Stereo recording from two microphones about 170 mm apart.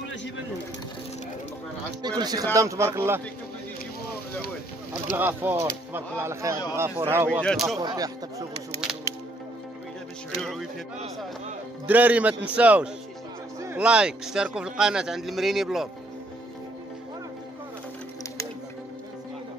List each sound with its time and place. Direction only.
2.0 s speech: 25° right (ahead or behind)
5.1 s speech: 10° right (ahead or behind)
7.2 s speech: 5° left (ahead or behind)
7.8 s speech: 20° right (ahead or behind)
10.4 s speech: centre (ahead or behind)
11.9 s speech: 10° right (ahead or behind)
13.6 s a sound: 15° right (ahead or behind)
13.8 s speech: 5° right (ahead or behind)